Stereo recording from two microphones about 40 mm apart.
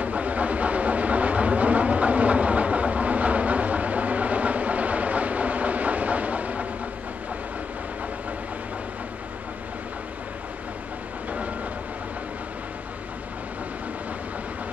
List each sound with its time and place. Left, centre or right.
0.0 s vehicle: right